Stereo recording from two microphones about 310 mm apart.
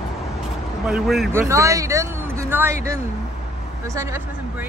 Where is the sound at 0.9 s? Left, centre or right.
Centre.